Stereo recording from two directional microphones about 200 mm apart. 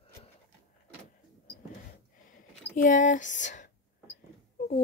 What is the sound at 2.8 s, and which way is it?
A child's voice, 40° left (ahead or behind).